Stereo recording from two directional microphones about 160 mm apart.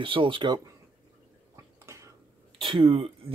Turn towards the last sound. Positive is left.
turn(degrees=-40)  # may be behind; listen again after turning